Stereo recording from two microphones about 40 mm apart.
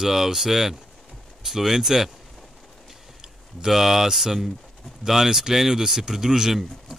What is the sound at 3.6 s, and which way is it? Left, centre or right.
Speech, centre.